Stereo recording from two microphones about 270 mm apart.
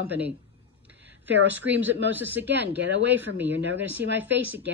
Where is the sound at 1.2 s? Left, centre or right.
Right.